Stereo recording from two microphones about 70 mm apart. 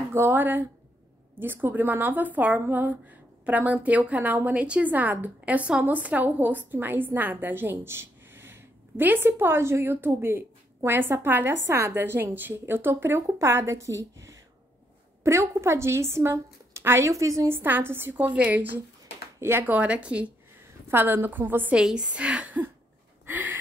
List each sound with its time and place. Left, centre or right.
0.1 s a woman's voice: right
17.5 s a woman's voice: right
18.3 s a woman's voice: centre
19.4 s a woman's voice: right
19.7 s a woman's voice: centre
20.9 s a woman's voice: right
21.7 s a woman's voice: centre
23.2 s a sound: right